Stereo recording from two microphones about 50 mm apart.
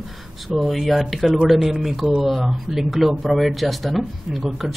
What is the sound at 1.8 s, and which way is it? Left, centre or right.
A man's voice, centre.